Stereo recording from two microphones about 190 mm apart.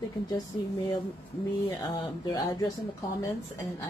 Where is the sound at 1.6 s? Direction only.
20° left (ahead or behind).